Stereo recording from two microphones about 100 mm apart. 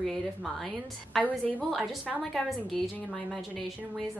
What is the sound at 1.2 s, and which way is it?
Speech, 15° left (ahead or behind).